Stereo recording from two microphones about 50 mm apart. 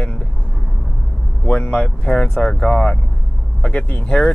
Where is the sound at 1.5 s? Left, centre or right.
Left.